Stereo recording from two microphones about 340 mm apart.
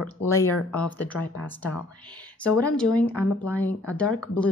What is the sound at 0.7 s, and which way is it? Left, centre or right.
Speech, centre.